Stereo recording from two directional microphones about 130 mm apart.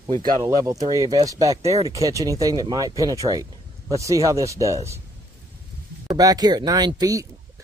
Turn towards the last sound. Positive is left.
turn(degrees=-30)  # may be behind; listen again after turning